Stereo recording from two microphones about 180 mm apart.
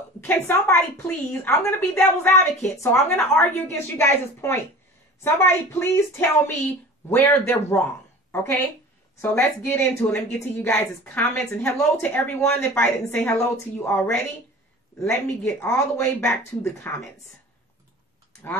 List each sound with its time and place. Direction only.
0.5 s a woman's voice: 10° left (ahead or behind)